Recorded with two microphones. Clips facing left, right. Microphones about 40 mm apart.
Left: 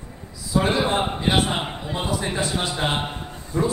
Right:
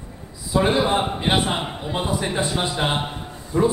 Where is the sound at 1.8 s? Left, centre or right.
Centre.